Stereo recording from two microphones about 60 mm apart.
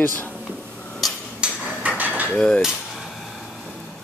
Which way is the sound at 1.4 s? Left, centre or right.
Right.